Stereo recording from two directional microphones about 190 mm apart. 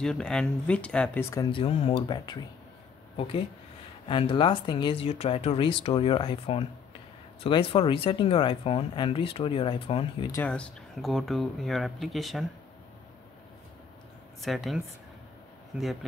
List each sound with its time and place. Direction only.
0.0 s speech: 5° left (ahead or behind)
1.3 s speech: 25° left (ahead or behind)
10.3 s speech: 10° left (ahead or behind)
14.4 s speech: centre (ahead or behind)
15.8 s speech: centre (ahead or behind)